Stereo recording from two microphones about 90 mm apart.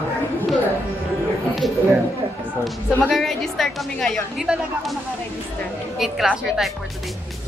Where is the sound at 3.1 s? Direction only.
5° left (ahead or behind).